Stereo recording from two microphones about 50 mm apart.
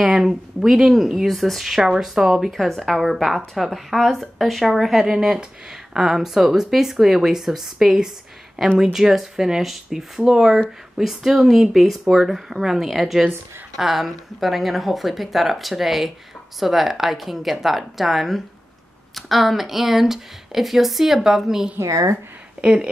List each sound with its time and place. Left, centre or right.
0.0 s speech: centre
21.7 s speech: right
22.6 s speech: centre